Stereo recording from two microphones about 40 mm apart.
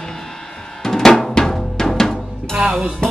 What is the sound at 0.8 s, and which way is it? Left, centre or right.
Drum, centre.